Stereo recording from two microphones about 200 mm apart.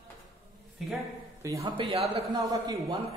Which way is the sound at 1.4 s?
15° right (ahead or behind).